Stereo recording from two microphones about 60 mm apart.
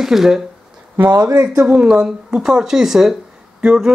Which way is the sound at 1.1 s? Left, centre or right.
Right.